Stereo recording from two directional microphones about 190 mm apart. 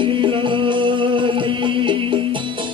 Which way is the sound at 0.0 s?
25° right (ahead or behind).